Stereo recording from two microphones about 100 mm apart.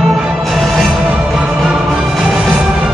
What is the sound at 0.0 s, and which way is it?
Music, 5° right (ahead or behind).